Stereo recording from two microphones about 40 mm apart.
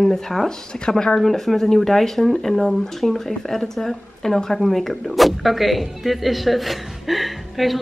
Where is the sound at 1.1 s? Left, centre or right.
Centre.